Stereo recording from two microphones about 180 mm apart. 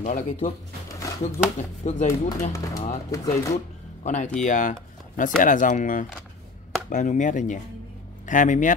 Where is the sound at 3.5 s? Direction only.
40° left (ahead or behind).